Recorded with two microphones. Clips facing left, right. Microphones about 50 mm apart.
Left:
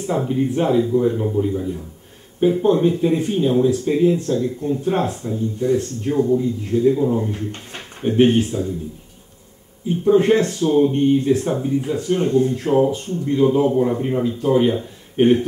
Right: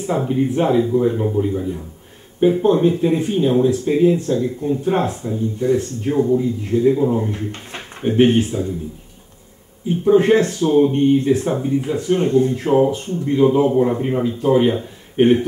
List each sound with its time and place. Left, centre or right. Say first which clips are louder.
0.0 s speech: right 1 dB; centre
8.0 s speech: right 1 dB; centre
9.8 s speech: right 1 dB; centre